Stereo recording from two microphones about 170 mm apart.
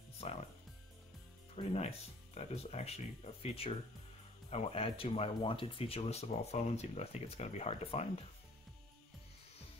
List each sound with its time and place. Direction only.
0.2 s music: 45° left (ahead or behind)
1.6 s speech: 35° left (ahead or behind)